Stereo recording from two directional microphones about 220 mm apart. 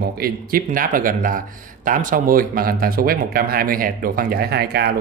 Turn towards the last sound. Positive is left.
turn(degrees=-45)  # may be behind; listen again after turning